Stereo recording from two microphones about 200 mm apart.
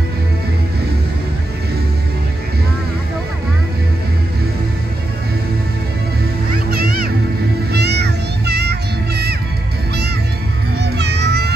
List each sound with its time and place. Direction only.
6.7 s music: 50° right (ahead or behind)
10.8 s music: 55° right (ahead or behind)